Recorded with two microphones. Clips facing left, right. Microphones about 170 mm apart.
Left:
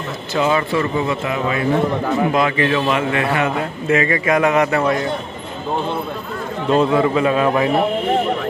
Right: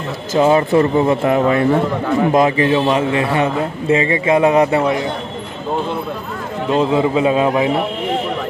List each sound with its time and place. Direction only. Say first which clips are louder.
0.3 s speech: right 5 dB; 40° right (ahead or behind)
2.3 s a man's voice: right 4 dB; 35° right (ahead or behind)
6.7 s a man's voice: even; 20° right (ahead or behind)